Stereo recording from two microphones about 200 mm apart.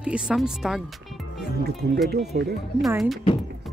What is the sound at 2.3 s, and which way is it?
Speech, 50° right (ahead or behind).